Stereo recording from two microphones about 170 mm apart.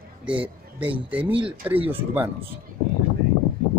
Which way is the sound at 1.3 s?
30° right (ahead or behind).